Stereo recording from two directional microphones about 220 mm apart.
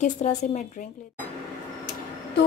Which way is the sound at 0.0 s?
30° left (ahead or behind).